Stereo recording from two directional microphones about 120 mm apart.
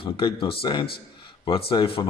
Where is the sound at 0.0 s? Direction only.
45° left (ahead or behind).